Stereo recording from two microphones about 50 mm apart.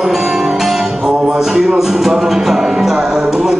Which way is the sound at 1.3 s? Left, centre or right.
Centre.